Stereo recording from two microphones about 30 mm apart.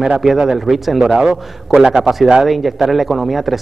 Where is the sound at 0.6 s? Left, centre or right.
Centre.